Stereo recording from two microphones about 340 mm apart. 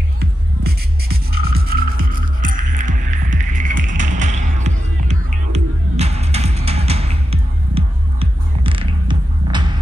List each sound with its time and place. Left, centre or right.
0.2 s music: right